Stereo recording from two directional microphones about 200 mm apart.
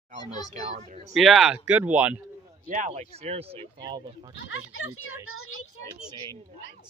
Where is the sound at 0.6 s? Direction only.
35° right (ahead or behind).